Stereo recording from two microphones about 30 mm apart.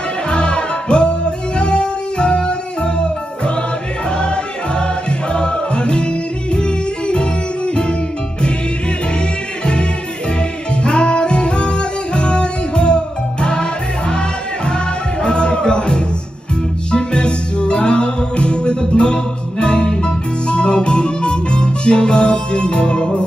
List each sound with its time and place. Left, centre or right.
0.3 s music: left
7.1 s music: left
10.8 s music: left
15.2 s music: left